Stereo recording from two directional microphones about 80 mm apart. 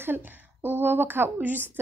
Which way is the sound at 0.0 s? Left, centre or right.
Right.